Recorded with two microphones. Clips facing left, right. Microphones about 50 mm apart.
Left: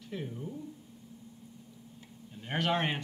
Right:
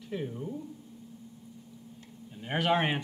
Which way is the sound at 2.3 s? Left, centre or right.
Centre.